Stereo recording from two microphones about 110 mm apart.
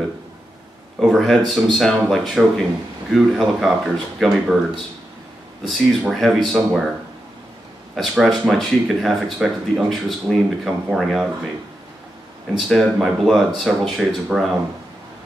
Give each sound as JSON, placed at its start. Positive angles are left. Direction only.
{"t": 0.9, "sound": "speech", "side_deg": -5}
{"t": 5.7, "sound": "speech", "side_deg": 0}
{"t": 7.9, "sound": "speech", "side_deg": 0}
{"t": 12.5, "sound": "speech", "side_deg": 0}